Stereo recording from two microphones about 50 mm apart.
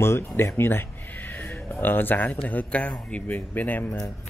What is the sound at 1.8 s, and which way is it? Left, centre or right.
Speech, left.